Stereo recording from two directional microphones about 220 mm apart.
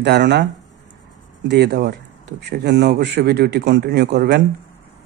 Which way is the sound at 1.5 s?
50° right (ahead or behind).